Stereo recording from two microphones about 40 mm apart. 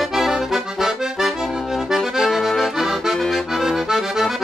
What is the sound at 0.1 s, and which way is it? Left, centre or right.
Accordion, centre.